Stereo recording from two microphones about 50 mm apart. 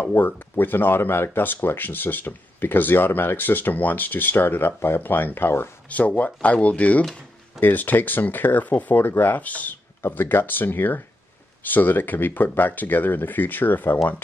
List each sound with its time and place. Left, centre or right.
0.1 s speech: left
5.9 s speech: left
7.6 s speech: left
10.0 s speech: left